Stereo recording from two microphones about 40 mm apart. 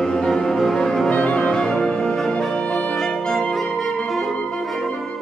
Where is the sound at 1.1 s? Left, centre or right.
Left.